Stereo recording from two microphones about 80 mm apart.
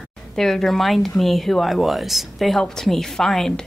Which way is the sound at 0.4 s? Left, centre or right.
Centre.